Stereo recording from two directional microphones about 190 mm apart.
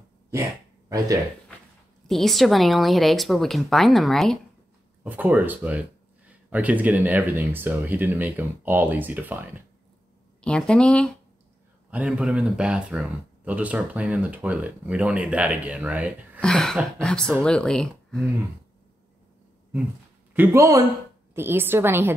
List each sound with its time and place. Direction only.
0.3 s a sound: 15° right (ahead or behind)
2.0 s speech: centre (ahead or behind)
5.0 s speech: 10° right (ahead or behind)
10.4 s speech: 5° left (ahead or behind)
20.3 s speech: 15° right (ahead or behind)